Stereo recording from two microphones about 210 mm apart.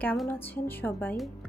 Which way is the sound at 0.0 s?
10° left (ahead or behind).